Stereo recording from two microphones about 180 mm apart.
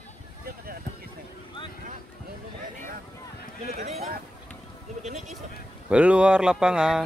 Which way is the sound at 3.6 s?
35° right (ahead or behind).